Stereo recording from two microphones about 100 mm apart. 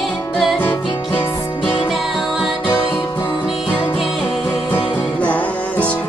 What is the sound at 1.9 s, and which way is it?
Music, centre (ahead or behind).